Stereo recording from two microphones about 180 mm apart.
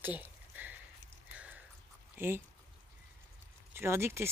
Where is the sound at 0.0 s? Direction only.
10° right (ahead or behind).